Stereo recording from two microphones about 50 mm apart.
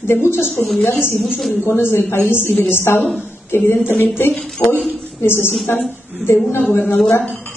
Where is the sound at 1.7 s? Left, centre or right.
Left.